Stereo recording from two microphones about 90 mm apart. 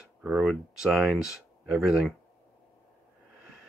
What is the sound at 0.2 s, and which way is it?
Speech, 10° right (ahead or behind).